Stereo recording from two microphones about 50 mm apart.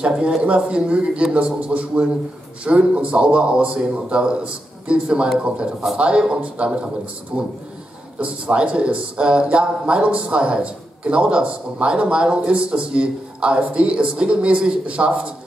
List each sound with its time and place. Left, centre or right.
0.0 s a man's voice: centre
8.2 s speech: right